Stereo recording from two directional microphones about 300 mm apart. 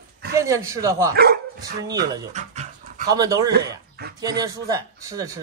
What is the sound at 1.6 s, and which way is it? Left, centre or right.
Speech, centre.